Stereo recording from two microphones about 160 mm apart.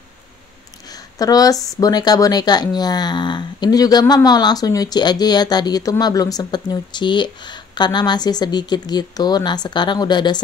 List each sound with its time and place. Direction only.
1.1 s speech: 25° left (ahead or behind)